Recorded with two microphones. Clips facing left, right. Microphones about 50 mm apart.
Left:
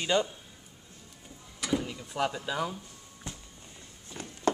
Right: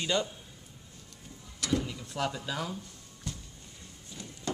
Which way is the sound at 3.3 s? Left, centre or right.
Left.